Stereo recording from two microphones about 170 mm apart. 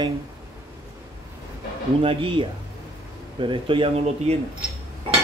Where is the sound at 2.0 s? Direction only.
30° right (ahead or behind).